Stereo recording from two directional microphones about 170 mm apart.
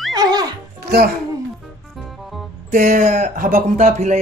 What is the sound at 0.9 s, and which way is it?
Speech, 70° right (ahead or behind).